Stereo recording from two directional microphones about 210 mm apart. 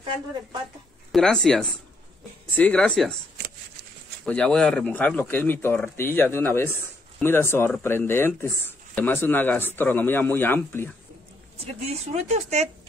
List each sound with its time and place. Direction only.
1.1 s speech: centre (ahead or behind)
4.3 s speech: 5° left (ahead or behind)
11.6 s a woman's voice: 30° right (ahead or behind)